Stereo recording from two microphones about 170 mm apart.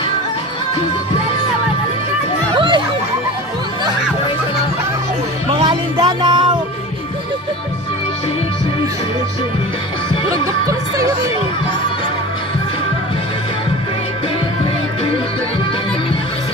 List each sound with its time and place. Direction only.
2.5 s music: 30° right (ahead or behind)
5.5 s music: 30° right (ahead or behind)
10.3 s speech: 20° right (ahead or behind)